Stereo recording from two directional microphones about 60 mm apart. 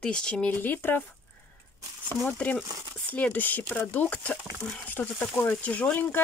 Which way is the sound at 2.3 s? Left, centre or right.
Left.